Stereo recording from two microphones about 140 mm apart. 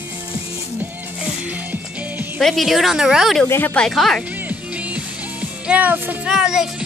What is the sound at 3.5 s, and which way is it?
Speech, 15° left (ahead or behind).